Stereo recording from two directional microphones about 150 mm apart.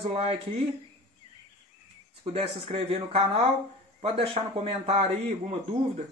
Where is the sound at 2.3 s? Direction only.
40° right (ahead or behind).